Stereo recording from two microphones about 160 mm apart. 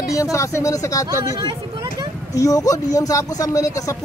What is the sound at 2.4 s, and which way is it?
Speech, 20° left (ahead or behind).